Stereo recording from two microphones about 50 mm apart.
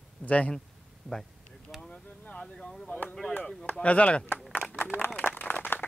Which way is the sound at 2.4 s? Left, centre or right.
Centre.